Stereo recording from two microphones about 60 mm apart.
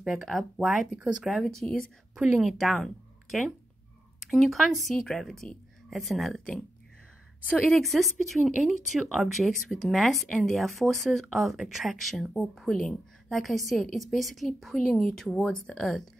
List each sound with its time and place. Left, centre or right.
0.0 s speech: centre
1.4 s speech: centre
2.1 s speech: centre
2.4 s speech: centre
7.4 s speech: centre
7.7 s speech: centre